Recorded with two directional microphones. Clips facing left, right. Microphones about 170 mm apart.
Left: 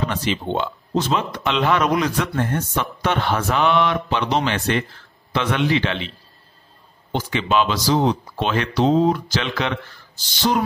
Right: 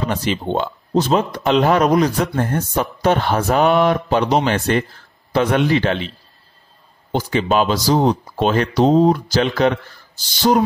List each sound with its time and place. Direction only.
0.1 s a man's voice: 40° right (ahead or behind)